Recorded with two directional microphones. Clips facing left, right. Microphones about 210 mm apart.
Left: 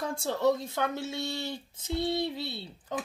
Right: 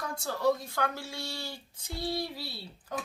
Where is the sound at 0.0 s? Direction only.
25° left (ahead or behind).